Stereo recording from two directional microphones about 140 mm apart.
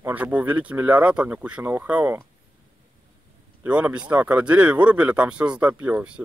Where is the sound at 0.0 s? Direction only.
10° right (ahead or behind).